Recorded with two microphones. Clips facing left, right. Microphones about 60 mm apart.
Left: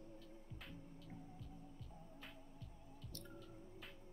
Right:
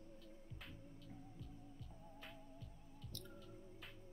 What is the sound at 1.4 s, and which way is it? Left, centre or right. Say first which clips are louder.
Music: even; centre.